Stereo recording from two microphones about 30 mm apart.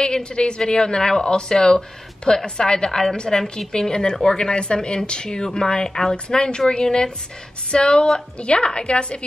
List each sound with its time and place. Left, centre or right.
0.0 s a woman's voice: left